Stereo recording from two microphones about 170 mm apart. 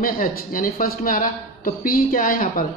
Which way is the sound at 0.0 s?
55° left (ahead or behind).